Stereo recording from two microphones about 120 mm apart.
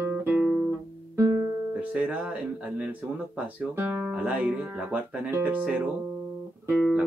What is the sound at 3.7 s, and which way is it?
Music, 15° right (ahead or behind).